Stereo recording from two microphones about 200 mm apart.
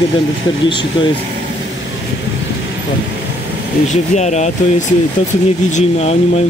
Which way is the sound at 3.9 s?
35° left (ahead or behind).